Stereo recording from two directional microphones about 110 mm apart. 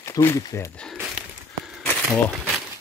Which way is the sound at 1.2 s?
10° right (ahead or behind).